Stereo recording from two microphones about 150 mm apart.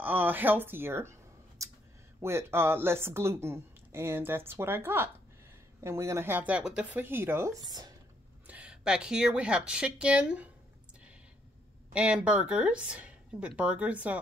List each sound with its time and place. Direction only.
0.0 s speech: 10° right (ahead or behind)
2.2 s speech: 15° right (ahead or behind)
8.5 s speech: 10° right (ahead or behind)
11.9 s speech: 5° right (ahead or behind)